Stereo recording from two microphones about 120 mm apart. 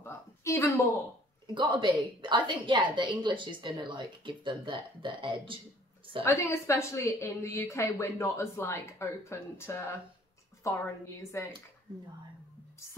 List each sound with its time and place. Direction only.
0.0 s a sound: 20° left (ahead or behind)
1.5 s a woman's voice: 40° right (ahead or behind)
6.2 s a woman's voice: 25° left (ahead or behind)
11.4 s a woman's voice: 25° left (ahead or behind)